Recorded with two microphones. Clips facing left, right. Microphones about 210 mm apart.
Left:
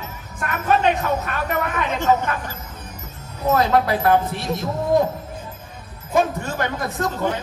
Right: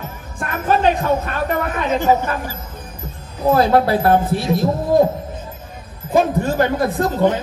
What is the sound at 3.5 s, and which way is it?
A man's voice, 30° right (ahead or behind).